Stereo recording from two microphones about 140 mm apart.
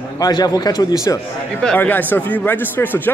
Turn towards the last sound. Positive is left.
turn(degrees=15)  # may be behind; listen again after turning